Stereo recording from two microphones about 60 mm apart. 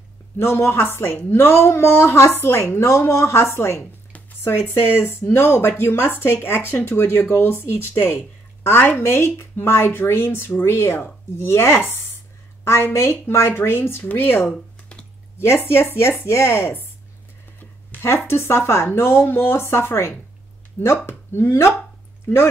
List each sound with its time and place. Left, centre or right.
0.4 s a woman's voice: left
18.0 s a woman's voice: left